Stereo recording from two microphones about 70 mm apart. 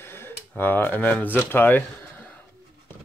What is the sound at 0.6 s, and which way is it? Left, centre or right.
Speech, left.